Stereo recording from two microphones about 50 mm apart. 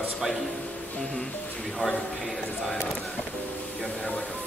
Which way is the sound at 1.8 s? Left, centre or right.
Left.